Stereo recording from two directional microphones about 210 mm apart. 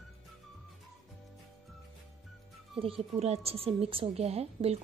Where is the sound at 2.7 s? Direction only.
25° right (ahead or behind).